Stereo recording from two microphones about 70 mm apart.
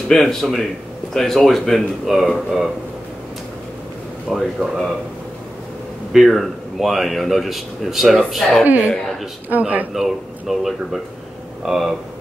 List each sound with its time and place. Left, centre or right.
0.1 s speech: centre
4.3 s speech: centre
6.1 s speech: centre
8.6 s speech: right
9.9 s speech: centre